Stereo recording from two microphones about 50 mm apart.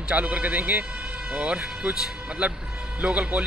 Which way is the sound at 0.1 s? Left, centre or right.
Right.